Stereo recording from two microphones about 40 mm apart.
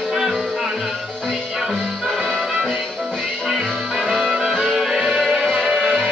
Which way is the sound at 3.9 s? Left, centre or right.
Centre.